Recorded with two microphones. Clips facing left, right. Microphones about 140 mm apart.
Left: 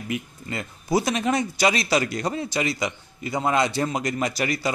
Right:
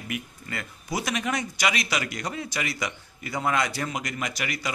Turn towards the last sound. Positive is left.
turn(degrees=35)  # may be behind; listen again after turning